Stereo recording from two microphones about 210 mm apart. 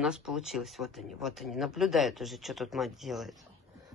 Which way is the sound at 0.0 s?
5° right (ahead or behind).